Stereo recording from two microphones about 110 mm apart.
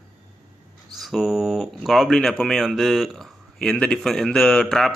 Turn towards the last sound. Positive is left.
turn(degrees=5)  # may be behind; listen again after turning